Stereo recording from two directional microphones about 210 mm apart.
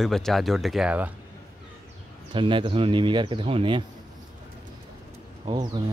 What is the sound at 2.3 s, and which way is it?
Speech, 25° right (ahead or behind).